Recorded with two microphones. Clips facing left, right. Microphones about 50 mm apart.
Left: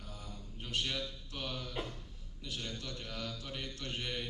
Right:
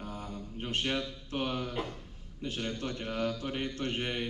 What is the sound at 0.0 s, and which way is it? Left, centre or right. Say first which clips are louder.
Mantra: right 9 dB; right.